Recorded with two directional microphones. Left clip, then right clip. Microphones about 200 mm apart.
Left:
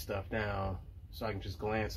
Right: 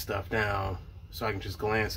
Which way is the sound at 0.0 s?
5° left (ahead or behind).